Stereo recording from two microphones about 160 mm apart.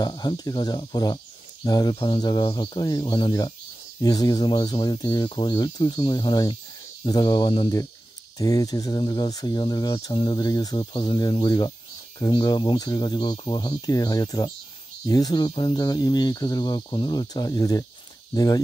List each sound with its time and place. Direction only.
0.0 s speech: 25° left (ahead or behind)